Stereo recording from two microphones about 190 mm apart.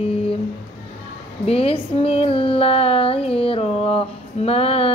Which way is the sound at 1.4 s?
30° left (ahead or behind).